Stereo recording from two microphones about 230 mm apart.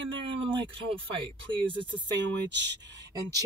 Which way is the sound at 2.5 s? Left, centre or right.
Right.